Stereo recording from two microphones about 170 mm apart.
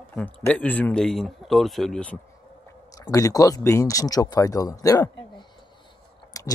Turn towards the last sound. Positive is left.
turn(degrees=20)  # may be behind; listen again after turning